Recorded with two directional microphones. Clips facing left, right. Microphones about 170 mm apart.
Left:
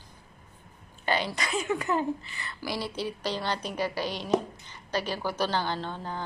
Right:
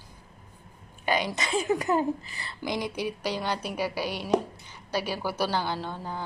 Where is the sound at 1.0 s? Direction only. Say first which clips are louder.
Right 1 dB; 10° right (ahead or behind); by 2.5 s 35° right (ahead or behind).